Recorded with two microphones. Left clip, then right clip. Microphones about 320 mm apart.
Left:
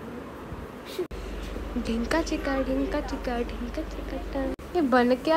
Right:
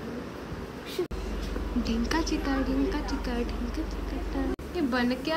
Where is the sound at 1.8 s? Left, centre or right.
Centre.